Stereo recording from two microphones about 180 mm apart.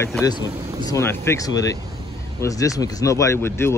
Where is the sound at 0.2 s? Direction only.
25° left (ahead or behind).